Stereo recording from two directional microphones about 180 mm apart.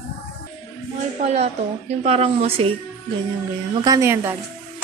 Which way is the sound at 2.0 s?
35° right (ahead or behind).